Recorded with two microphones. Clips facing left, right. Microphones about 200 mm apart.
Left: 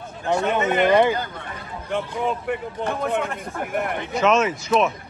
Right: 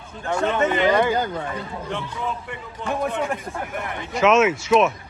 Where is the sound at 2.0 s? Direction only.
55° left (ahead or behind).